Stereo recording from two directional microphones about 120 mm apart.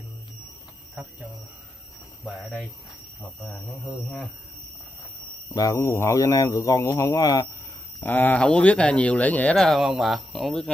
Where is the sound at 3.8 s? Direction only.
10° left (ahead or behind).